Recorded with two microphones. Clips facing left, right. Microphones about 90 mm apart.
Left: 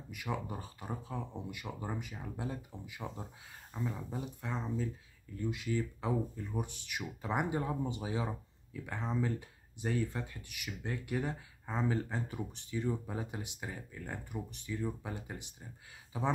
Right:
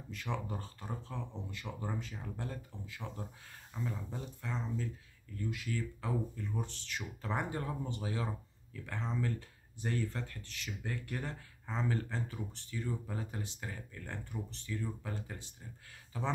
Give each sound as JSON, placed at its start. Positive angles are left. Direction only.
{"t": 0.1, "sound": "speech", "side_deg": 10}